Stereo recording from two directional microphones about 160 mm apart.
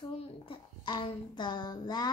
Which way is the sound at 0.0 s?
30° left (ahead or behind).